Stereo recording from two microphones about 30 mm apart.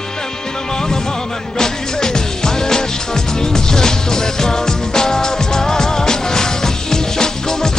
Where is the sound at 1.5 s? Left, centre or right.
Centre.